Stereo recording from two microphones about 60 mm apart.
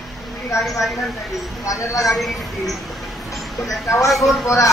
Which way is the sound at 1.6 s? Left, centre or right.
Left.